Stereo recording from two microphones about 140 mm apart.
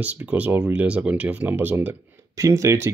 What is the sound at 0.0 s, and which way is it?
Speech, 10° right (ahead or behind).